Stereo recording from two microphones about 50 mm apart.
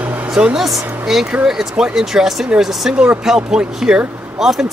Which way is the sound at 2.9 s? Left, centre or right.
Right.